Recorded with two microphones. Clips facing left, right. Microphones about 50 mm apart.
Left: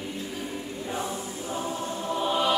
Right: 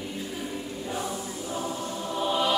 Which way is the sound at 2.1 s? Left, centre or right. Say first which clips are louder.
Even; centre.